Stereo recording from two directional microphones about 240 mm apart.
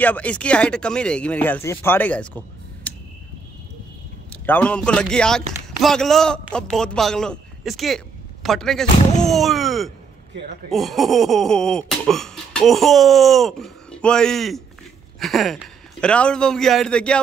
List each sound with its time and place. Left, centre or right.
0.0 s a man's voice: centre
4.5 s a man's voice: centre